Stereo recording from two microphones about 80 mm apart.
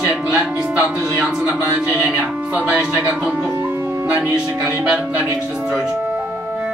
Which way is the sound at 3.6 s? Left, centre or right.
Right.